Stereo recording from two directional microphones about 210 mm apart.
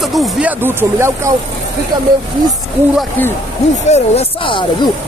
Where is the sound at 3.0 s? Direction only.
10° left (ahead or behind).